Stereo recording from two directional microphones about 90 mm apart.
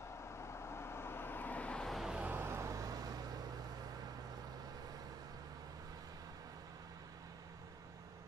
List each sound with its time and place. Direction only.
0.2 s vehicle: 30° left (ahead or behind); by 2.1 s centre (ahead or behind)
2.1 s vehicle: 15° right (ahead or behind)
2.4 s vehicle: 30° right (ahead or behind)